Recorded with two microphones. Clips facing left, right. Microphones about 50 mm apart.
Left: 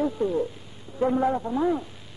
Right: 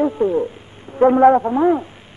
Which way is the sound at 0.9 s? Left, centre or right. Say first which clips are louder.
Right 12 dB; right.